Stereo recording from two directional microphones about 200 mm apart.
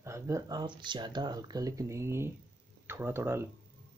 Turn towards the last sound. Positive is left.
turn(degrees=-10)  # may be behind; listen again after turning